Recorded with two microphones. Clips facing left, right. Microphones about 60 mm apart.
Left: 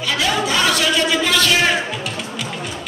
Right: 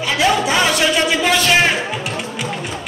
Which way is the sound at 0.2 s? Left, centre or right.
Right.